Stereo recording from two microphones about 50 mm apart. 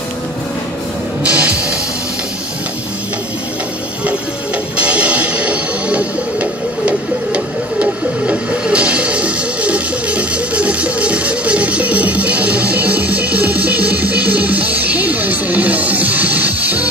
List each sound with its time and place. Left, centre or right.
1.2 s music: right
4.7 s music: right